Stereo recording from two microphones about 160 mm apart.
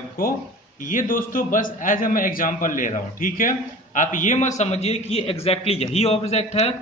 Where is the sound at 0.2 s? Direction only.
65° left (ahead or behind).